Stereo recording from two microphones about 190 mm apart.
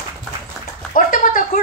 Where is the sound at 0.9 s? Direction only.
45° left (ahead or behind).